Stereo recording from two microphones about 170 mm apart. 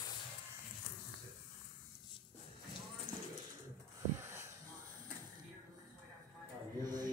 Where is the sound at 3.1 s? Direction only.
40° left (ahead or behind).